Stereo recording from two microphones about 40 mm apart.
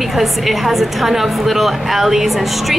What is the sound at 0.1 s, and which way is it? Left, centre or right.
A woman's voice, centre.